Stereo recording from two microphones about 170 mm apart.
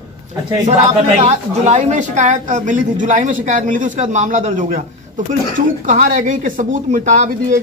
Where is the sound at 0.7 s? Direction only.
40° right (ahead or behind).